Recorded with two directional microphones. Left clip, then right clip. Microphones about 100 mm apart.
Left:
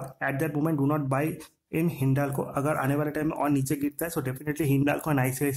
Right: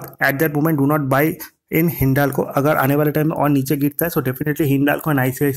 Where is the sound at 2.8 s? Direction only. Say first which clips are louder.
Right 11 dB; 70° right (ahead or behind).